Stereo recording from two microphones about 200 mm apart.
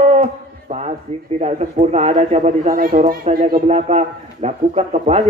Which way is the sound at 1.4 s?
35° right (ahead or behind).